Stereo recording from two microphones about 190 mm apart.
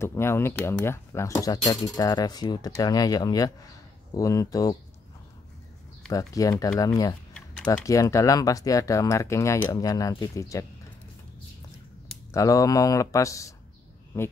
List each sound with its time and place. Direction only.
0.0 s speech: 15° left (ahead or behind)
6.1 s speech: 20° left (ahead or behind)
12.3 s speech: 15° left (ahead or behind)